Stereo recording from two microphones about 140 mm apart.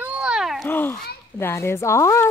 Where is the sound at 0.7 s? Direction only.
15° left (ahead or behind).